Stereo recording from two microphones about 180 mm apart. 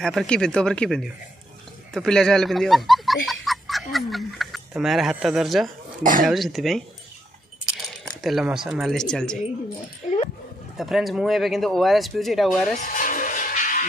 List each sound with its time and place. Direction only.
0.0 s speech: centre (ahead or behind)
3.3 s music: centre (ahead or behind)
3.9 s speech: centre (ahead or behind)
10.0 s speech: 40° left (ahead or behind)
10.8 s speech: centre (ahead or behind)
12.7 s music: 50° left (ahead or behind)